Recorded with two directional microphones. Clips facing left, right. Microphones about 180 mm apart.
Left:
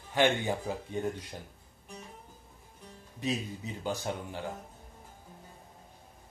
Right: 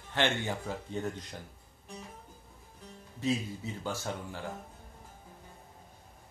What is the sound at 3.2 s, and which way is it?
Speech, 15° left (ahead or behind).